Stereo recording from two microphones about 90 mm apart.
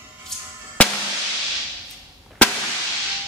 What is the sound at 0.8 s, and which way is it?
Music, 15° left (ahead or behind).